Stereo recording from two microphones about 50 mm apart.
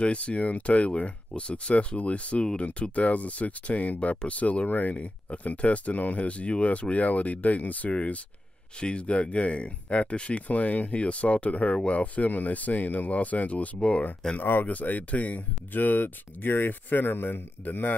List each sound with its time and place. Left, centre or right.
0.0 s speech: left
14.5 s speech: left